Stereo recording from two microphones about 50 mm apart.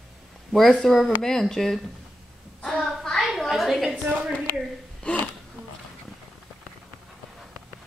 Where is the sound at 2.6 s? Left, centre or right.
Centre.